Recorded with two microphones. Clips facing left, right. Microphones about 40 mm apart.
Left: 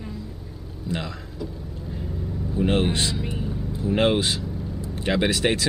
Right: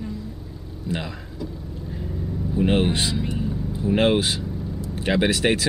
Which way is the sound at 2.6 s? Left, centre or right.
Centre.